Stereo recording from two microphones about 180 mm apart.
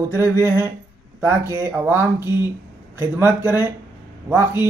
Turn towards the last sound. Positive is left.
turn(degrees=-10)  # may be behind; listen again after turning